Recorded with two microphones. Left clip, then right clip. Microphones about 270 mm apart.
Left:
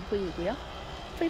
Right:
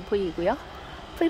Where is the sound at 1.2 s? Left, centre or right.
Centre.